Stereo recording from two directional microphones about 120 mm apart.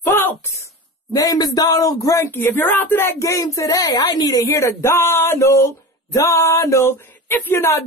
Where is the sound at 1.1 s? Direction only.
30° left (ahead or behind).